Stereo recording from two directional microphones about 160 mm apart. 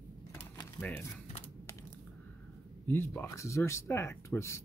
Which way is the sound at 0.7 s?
10° left (ahead or behind).